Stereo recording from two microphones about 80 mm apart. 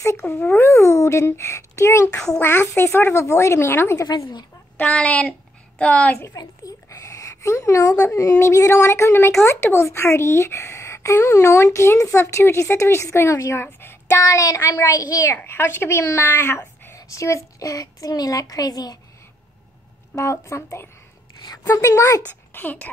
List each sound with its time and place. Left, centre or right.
0.2 s a woman's voice: left
2.1 s speech: centre
2.4 s a woman's voice: left
4.7 s speech: centre
6.3 s a sound: left
8.1 s a woman's voice: left
13.7 s child singing: left
14.2 s a woman's voice: left
15.4 s a woman's voice: left
20.2 s a woman's voice: left
21.5 s a woman's voice: left
22.2 s a child's voice: left